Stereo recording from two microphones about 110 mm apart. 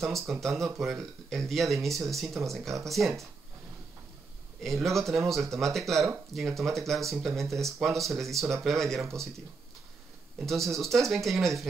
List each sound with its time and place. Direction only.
0.0 s speech: centre (ahead or behind)
4.6 s speech: centre (ahead or behind)
10.4 s speech: centre (ahead or behind)